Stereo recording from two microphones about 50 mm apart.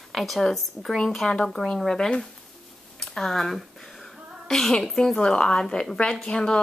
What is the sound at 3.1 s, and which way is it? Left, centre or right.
A woman's voice, centre.